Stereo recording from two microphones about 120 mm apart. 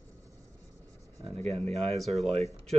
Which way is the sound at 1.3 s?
55° right (ahead or behind).